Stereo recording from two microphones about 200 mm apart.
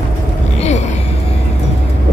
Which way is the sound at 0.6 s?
35° left (ahead or behind).